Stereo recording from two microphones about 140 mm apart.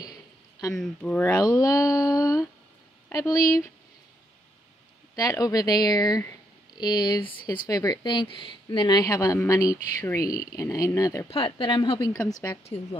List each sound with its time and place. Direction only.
0.7 s speech: 10° left (ahead or behind)
1.4 s speech: 25° left (ahead or behind)
5.1 s speech: 25° left (ahead or behind)
7.2 s speech: 15° left (ahead or behind)
7.6 s speech: 25° left (ahead or behind)
11.2 s a woman's voice: 40° left (ahead or behind)
12.1 s speech: 25° left (ahead or behind)